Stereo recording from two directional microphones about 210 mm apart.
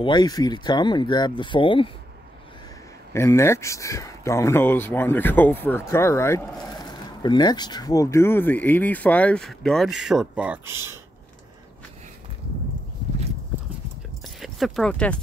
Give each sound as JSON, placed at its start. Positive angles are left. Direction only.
{"t": 0.0, "sound": "speech", "side_deg": 20}
{"t": 3.1, "sound": "speech", "side_deg": 15}
{"t": 14.2, "sound": "keys jangling", "side_deg": 0}